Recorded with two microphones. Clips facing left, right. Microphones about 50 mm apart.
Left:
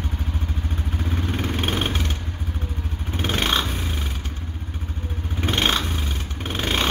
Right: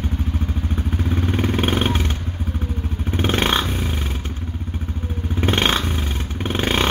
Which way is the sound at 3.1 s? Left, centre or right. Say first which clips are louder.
Right 3 dB; right.